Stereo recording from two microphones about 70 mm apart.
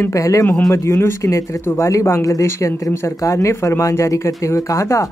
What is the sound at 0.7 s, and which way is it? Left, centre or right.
Speech, left.